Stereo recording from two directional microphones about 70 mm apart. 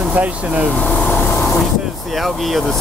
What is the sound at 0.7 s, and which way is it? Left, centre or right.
Speech, centre.